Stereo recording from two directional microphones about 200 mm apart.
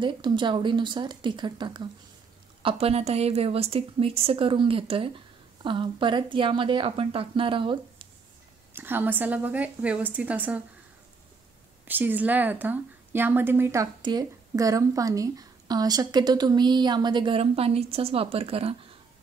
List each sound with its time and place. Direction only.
0.0 s speech: 25° right (ahead or behind)
8.7 s a woman's voice: 10° right (ahead or behind)
11.8 s speech: 10° right (ahead or behind); by 18.8 s 30° right (ahead or behind)